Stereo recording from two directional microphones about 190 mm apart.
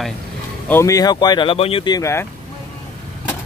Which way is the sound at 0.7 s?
15° left (ahead or behind).